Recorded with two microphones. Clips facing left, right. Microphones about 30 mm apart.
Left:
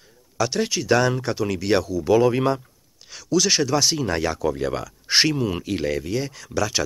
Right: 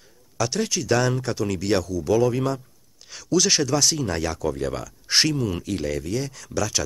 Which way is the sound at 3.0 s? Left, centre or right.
Centre.